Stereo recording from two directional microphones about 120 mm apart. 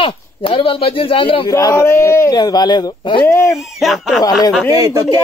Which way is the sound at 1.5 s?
25° left (ahead or behind).